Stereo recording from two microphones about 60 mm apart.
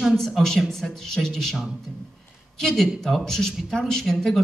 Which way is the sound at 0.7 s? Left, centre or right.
Centre.